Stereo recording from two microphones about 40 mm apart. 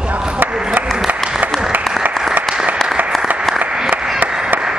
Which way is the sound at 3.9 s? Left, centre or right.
Right.